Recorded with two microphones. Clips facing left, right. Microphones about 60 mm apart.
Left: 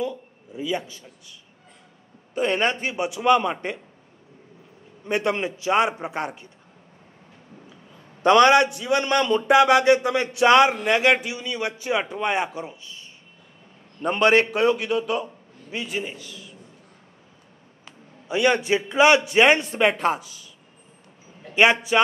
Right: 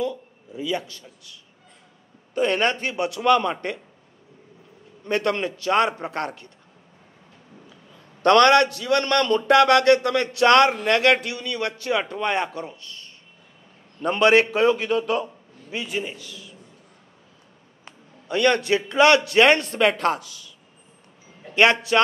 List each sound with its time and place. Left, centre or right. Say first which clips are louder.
0.1 s speech: right 1 dB; centre
2.3 s speech: right 1 dB; centre
5.0 s speech: right 1 dB; centre
7.7 s a man's voice: left 1 dB; centre
14.0 s a man's voice: right 1 dB; centre
18.3 s speech: right 1 dB; centre
21.5 s speech: even; centre